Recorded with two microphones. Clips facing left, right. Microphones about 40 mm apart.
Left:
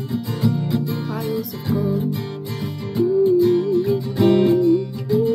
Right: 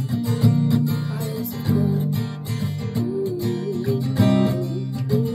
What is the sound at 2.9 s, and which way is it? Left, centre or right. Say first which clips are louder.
Music: left 10 dB; left.